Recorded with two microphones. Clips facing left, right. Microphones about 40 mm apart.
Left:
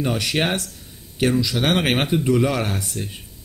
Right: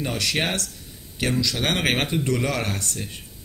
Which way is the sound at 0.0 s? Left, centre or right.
Centre.